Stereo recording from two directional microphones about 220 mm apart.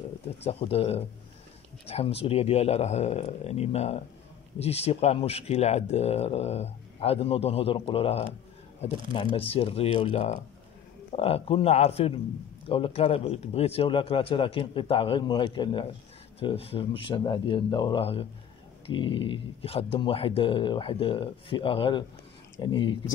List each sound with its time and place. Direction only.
0.4 s speech: 25° left (ahead or behind)